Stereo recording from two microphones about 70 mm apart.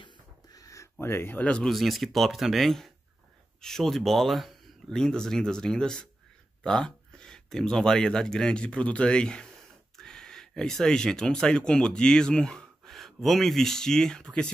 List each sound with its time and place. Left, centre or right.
0.5 s a sound: left
0.9 s speech: left
1.4 s speech: centre
1.7 s speech: centre